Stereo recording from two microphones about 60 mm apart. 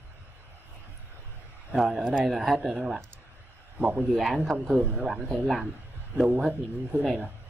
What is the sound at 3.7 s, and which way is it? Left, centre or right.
A man's voice, right.